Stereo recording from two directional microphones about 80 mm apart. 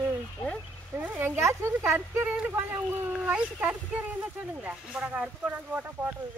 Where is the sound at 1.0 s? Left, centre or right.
Right.